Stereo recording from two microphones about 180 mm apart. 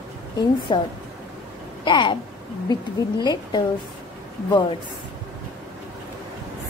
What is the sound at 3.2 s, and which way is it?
Speech, 25° left (ahead or behind).